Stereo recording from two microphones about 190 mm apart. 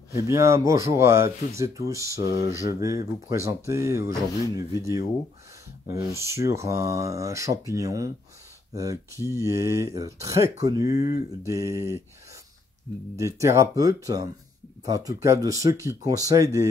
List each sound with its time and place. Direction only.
0.1 s speech: 15° right (ahead or behind)
13.1 s speech: 15° right (ahead or behind)